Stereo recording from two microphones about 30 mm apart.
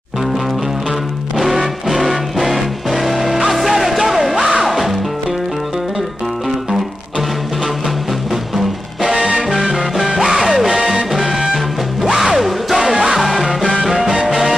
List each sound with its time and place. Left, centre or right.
1.4 s music: centre
9.1 s music: centre
9.9 s music: centre